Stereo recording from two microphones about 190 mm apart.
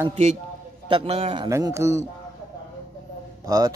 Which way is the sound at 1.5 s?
15° right (ahead or behind).